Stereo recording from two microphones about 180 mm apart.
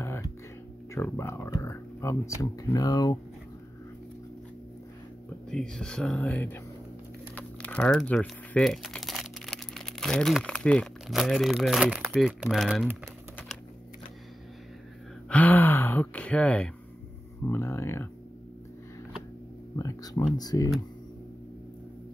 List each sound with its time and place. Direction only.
0.0 s music: 15° left (ahead or behind)
0.9 s speech: 15° left (ahead or behind)
5.5 s speech: 5° left (ahead or behind)
15.2 s gasp: 10° left (ahead or behind)
17.4 s speech: 15° left (ahead or behind)
19.8 s a sound: 20° left (ahead or behind)
20.3 s speech: 20° left (ahead or behind)